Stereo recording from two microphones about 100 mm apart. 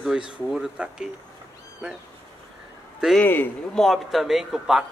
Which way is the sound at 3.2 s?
20° left (ahead or behind).